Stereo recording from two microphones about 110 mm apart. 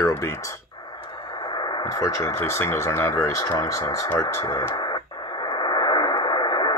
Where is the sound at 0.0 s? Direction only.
25° left (ahead or behind).